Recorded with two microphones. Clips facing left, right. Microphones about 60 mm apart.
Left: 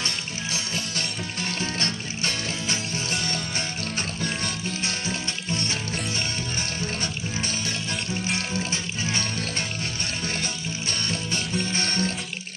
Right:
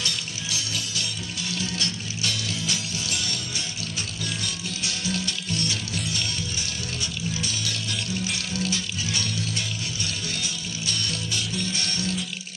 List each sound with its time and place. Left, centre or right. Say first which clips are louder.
0.0 s music: left 1 dB; left
4.2 s music: left 2 dB; left
7.4 s music: left 1 dB; left
10.2 s music: left 3 dB; left